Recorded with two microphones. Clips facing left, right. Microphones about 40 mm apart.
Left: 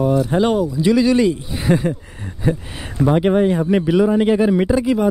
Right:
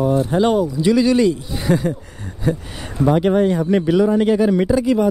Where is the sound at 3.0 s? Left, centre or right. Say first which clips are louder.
Even; centre.